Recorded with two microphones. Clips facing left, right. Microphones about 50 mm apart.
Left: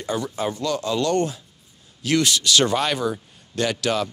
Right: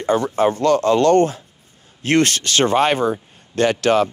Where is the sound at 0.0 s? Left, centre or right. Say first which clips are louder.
Right 9 dB; right.